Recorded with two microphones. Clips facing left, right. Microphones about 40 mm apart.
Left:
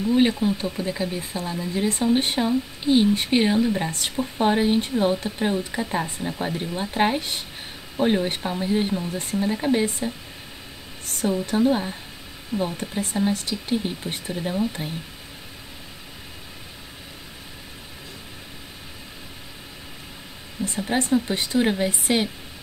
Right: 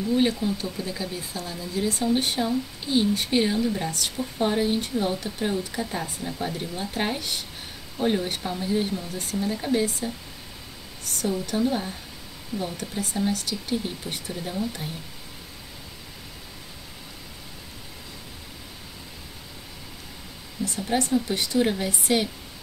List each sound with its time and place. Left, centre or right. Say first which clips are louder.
0.1 s speech: left 3 dB; left
11.1 s speech: left 4 dB; left
20.6 s speech: left 1 dB; left